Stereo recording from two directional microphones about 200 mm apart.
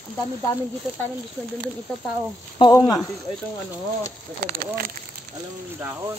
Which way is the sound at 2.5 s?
25° left (ahead or behind).